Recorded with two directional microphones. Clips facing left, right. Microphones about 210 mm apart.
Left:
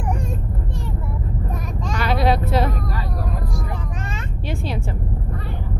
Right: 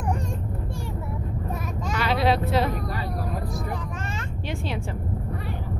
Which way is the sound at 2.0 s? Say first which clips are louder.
Left 2 dB; 45° left (ahead or behind).